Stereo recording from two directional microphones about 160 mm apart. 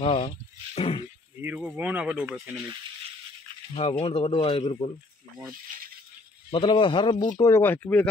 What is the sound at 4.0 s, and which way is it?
Speech, 40° left (ahead or behind).